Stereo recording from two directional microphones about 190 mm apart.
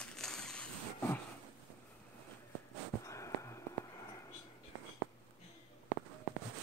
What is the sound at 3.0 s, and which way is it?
Whispering, 15° left (ahead or behind).